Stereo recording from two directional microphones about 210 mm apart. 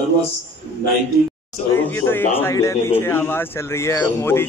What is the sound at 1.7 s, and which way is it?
Speech, 10° left (ahead or behind).